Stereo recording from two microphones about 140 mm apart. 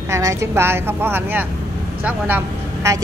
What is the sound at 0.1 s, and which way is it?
A woman's voice, 20° right (ahead or behind).